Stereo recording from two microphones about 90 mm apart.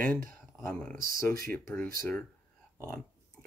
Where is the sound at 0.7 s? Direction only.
10° left (ahead or behind).